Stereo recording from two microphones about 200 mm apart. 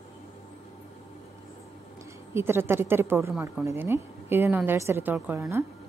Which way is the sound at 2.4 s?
10° right (ahead or behind).